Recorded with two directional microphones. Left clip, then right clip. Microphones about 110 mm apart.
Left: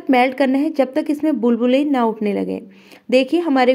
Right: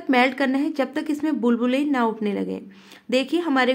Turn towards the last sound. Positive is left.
turn(degrees=40)  # may be behind; listen again after turning